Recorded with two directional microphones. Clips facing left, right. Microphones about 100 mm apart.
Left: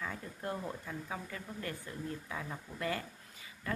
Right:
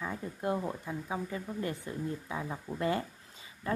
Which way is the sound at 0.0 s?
20° right (ahead or behind).